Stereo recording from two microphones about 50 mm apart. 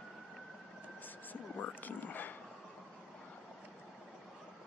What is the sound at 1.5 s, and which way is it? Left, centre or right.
Speech, left.